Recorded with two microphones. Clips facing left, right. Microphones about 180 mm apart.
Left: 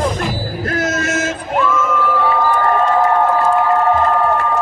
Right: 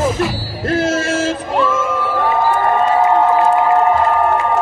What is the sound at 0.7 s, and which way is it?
Music, 30° right (ahead or behind).